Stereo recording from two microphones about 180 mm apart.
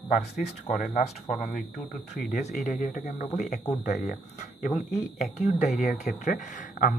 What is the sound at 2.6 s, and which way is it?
Speech, 45° left (ahead or behind).